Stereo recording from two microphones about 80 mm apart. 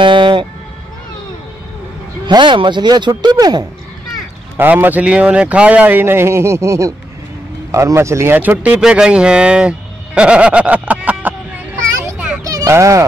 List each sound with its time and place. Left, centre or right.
0.0 s music: right
2.2 s speech: right
4.6 s speech: right
8.3 s speech: right
12.4 s a sound: right